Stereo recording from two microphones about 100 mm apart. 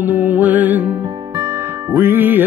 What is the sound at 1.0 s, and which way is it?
Music, 40° right (ahead or behind).